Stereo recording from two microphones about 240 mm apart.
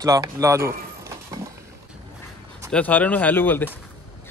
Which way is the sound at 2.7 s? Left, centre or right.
Centre.